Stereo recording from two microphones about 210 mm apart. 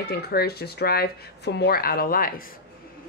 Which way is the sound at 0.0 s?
50° left (ahead or behind).